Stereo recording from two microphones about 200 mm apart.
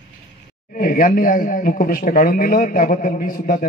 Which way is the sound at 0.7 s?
45° left (ahead or behind).